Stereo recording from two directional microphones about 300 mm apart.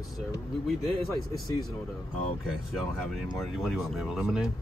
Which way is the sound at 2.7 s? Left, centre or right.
Centre.